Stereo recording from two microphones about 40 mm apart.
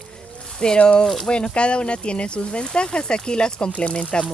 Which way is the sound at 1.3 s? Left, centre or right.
Left.